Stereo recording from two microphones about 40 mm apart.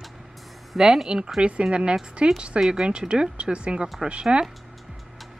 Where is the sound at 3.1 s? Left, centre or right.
Right.